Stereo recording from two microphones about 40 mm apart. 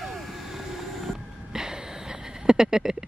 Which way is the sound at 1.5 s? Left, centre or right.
Centre.